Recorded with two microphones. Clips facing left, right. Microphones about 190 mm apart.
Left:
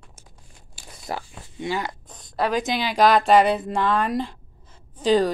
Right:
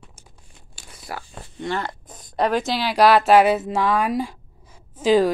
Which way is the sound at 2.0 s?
5° right (ahead or behind).